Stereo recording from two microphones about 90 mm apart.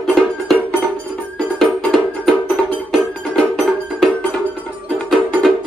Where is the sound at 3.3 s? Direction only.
Centre (ahead or behind).